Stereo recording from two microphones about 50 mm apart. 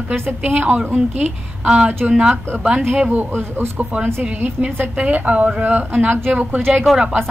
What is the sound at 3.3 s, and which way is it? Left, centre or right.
Speech, right.